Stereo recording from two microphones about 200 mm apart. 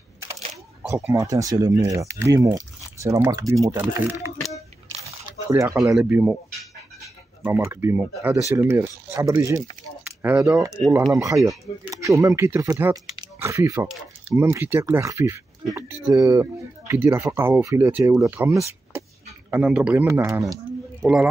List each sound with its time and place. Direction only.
0.8 s speech: 15° right (ahead or behind)
5.5 s speech: 15° right (ahead or behind)
10.0 s speech: 5° right (ahead or behind)
11.1 s speech: 15° right (ahead or behind)
21.0 s speech: 5° right (ahead or behind)